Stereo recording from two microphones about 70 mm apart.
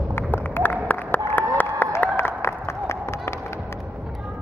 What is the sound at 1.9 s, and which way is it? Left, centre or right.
Applause, left.